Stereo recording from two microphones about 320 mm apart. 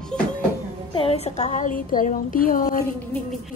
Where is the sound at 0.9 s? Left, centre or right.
Centre.